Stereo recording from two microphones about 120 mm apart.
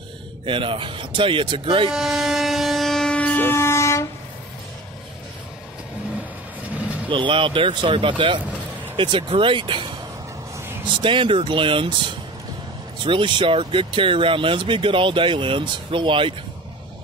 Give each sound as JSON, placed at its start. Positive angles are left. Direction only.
{"t": 0.5, "sound": "speech", "side_deg": -45}
{"t": 1.9, "sound": "train", "side_deg": -5}
{"t": 6.8, "sound": "vehicle", "side_deg": -10}
{"t": 7.1, "sound": "speech", "side_deg": -45}
{"t": 11.0, "sound": "speech", "side_deg": -45}